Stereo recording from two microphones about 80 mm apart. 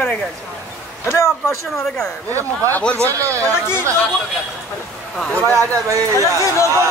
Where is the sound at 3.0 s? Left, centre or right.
Right.